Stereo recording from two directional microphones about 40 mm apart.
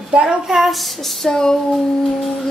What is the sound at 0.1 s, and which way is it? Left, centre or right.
Child singing, right.